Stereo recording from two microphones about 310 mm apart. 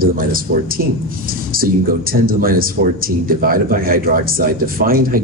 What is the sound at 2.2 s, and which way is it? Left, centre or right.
Speech, right.